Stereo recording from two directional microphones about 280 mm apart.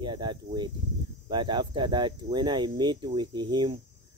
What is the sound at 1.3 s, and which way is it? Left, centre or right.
Speech, centre.